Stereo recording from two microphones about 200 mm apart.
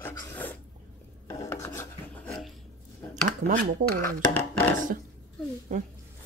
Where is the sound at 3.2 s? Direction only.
40° right (ahead or behind).